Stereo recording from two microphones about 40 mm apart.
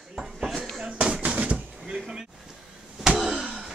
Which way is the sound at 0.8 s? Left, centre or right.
Right.